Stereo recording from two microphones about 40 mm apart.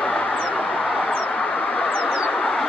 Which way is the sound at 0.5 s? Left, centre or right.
Left.